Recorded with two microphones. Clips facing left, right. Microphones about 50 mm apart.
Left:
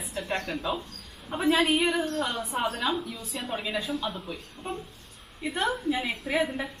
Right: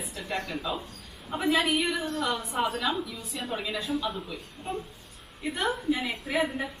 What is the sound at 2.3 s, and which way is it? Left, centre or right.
Speech, centre.